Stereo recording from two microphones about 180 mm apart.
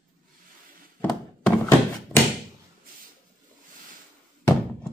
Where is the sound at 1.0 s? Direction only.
10° left (ahead or behind).